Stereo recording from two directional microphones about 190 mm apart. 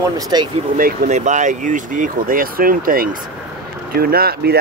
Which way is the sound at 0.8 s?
45° right (ahead or behind).